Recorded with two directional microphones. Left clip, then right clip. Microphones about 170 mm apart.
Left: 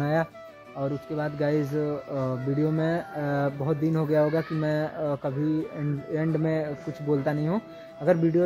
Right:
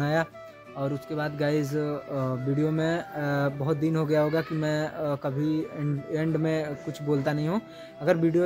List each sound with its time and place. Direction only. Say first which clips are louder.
0.0 s music: even; 5° right (ahead or behind)
0.7 s speech: left 1 dB; 5° right (ahead or behind)